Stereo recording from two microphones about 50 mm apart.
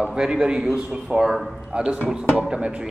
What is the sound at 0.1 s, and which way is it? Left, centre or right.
A man's voice, centre.